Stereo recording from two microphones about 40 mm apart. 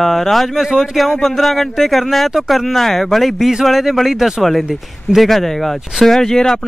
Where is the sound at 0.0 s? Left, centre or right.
Centre.